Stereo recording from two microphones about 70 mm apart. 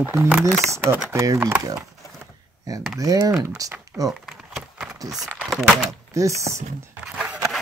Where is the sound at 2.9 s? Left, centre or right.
Right.